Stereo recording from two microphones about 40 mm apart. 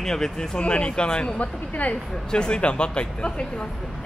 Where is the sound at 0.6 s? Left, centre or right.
Left.